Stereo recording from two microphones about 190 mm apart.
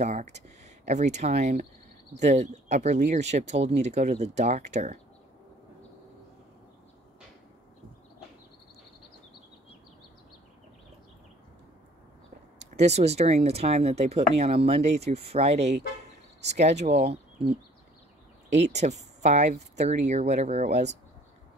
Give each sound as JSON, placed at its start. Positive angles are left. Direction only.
{"t": 0.0, "sound": "speech", "side_deg": -40}
{"t": 12.5, "sound": "speech", "side_deg": -35}
{"t": 18.5, "sound": "speech", "side_deg": -35}